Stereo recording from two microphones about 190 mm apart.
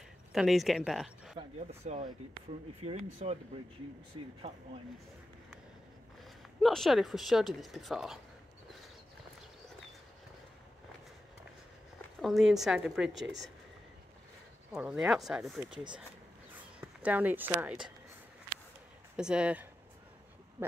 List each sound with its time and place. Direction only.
0.3 s speech: centre (ahead or behind)
1.7 s speech: 35° right (ahead or behind)
4.4 s speech: 30° right (ahead or behind)
6.6 s speech: centre (ahead or behind)
12.2 s speech: centre (ahead or behind)
14.7 s speech: 5° right (ahead or behind)
16.8 s speech: 10° right (ahead or behind)
19.1 s speech: 5° right (ahead or behind)